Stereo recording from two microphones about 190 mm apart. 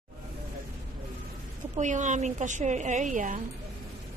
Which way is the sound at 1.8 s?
40° right (ahead or behind).